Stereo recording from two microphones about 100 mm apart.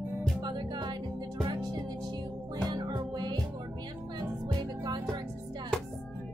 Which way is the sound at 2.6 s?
45° right (ahead or behind).